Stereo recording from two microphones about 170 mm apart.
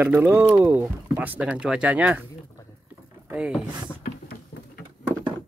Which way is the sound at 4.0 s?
60° left (ahead or behind).